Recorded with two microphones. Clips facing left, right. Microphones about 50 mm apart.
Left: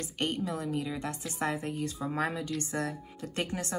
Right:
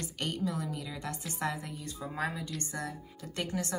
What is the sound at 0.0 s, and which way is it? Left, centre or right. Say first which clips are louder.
A woman's voice: left 2 dB; left.